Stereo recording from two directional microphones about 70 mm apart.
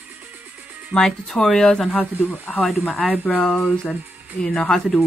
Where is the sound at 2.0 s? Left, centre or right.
Left.